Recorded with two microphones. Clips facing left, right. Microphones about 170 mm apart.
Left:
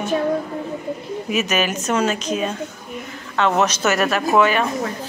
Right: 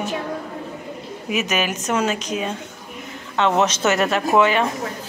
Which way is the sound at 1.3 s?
15° right (ahead or behind).